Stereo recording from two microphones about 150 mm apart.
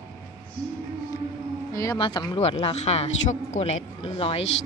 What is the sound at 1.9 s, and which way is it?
A man's voice, 35° left (ahead or behind).